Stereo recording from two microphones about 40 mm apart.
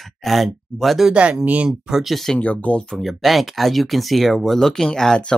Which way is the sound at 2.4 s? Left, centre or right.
Left.